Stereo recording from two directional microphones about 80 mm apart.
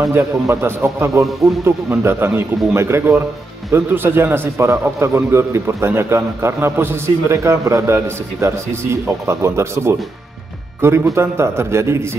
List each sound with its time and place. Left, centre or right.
0.1 s a man's voice: right